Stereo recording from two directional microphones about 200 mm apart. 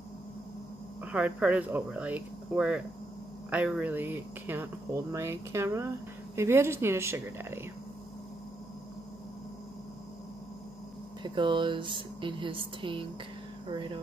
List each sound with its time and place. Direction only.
1.0 s a woman's voice: 5° right (ahead or behind)
11.2 s speech: 25° right (ahead or behind)